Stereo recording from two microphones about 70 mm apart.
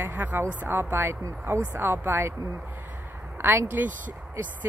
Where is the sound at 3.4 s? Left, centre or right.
Right.